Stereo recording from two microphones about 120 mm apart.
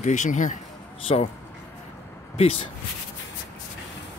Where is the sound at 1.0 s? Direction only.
60° left (ahead or behind).